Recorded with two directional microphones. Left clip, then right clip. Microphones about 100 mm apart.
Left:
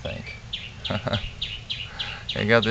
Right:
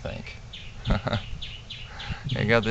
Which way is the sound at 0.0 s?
45° right (ahead or behind).